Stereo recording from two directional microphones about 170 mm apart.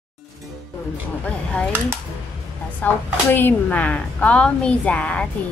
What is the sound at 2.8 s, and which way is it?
Speech, 10° left (ahead or behind).